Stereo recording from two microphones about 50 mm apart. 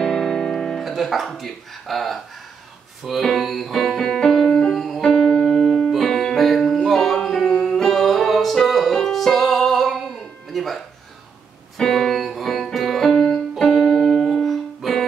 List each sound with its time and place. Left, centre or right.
0.0 s music: centre
5.6 s music: centre
11.8 s music: centre
13.3 s music: centre
14.1 s music: centre